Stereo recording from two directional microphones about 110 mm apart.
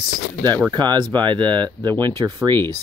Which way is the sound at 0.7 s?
40° right (ahead or behind).